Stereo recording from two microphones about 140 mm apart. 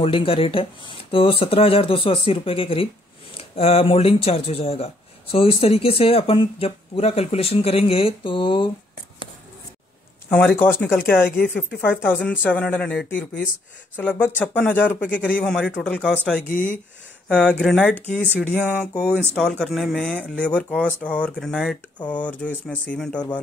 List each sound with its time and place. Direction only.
0.0 s speech: 40° left (ahead or behind)
10.3 s speech: 10° left (ahead or behind)